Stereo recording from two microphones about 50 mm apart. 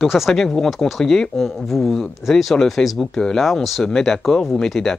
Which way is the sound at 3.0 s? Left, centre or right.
Centre.